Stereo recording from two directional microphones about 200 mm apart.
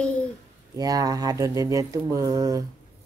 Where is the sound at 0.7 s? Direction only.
20° right (ahead or behind).